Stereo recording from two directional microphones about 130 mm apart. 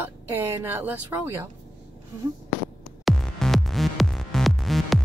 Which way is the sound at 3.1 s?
5° left (ahead or behind).